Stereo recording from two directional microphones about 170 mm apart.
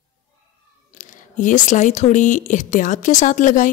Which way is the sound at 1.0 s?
50° left (ahead or behind).